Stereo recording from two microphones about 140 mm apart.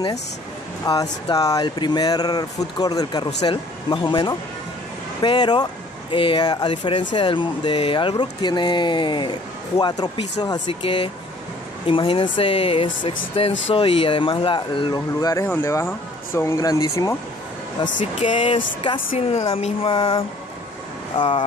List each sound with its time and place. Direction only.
0.9 s speech: 30° left (ahead or behind)
15.0 s speech: 20° left (ahead or behind)
18.0 s speech: 60° left (ahead or behind)
19.5 s speech: 45° left (ahead or behind)